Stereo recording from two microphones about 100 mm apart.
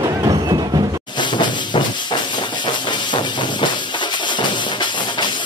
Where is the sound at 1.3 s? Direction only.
50° left (ahead or behind).